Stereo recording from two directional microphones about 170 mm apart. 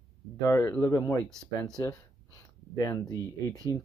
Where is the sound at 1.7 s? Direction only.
20° left (ahead or behind).